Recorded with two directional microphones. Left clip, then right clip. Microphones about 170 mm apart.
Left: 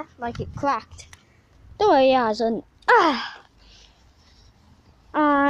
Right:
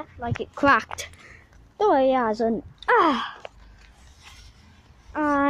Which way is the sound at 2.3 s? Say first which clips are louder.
Left 1 dB; 5° right (ahead or behind).